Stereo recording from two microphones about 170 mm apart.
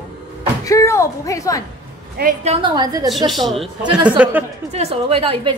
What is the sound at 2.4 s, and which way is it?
Speech, 35° right (ahead or behind).